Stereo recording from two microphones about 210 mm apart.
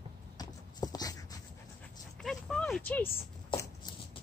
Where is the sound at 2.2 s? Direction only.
Centre (ahead or behind).